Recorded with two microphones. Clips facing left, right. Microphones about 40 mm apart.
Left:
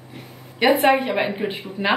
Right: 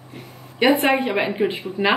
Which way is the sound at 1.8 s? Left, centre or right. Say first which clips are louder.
Right 2 dB; centre.